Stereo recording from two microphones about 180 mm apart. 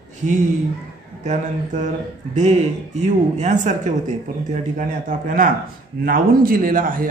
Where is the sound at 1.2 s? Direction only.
40° right (ahead or behind).